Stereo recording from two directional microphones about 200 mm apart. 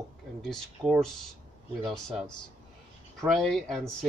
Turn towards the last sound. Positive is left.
turn(degrees=0)  # may be behind; listen again after turning